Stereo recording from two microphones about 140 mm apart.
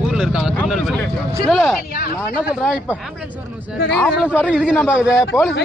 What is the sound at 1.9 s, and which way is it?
Speech, 90° left.